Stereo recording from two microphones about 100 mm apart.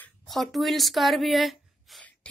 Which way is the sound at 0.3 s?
Centre (ahead or behind).